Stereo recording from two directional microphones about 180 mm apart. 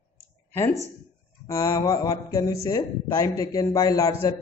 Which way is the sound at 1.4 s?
20° left (ahead or behind).